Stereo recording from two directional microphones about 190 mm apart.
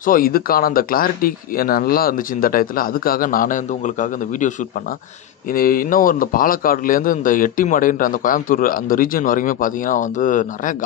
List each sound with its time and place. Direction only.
0.0 s a man's voice: 50° left (ahead or behind)
5.5 s a man's voice: 50° left (ahead or behind)